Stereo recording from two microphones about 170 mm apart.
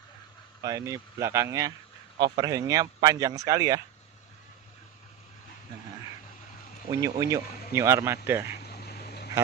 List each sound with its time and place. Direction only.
0.6 s speech: 20° right (ahead or behind)
6.9 s a man's voice: 20° right (ahead or behind)
8.6 s a sound: 70° left (ahead or behind)